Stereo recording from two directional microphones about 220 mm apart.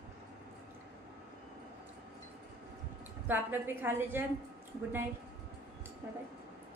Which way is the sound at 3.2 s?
10° right (ahead or behind).